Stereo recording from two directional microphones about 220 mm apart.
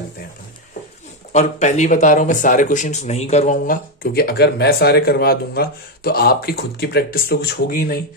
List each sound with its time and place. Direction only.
1.3 s speech: 30° left (ahead or behind)